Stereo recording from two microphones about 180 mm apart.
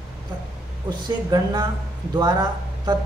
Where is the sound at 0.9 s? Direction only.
20° right (ahead or behind).